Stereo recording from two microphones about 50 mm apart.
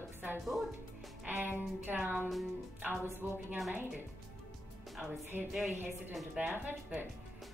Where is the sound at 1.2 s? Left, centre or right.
Right.